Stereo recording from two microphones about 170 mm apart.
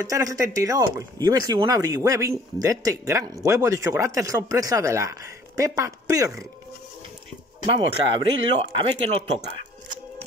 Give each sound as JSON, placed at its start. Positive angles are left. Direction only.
{"t": 0.0, "sound": "speech", "side_deg": -20}
{"t": 7.6, "sound": "speech", "side_deg": -30}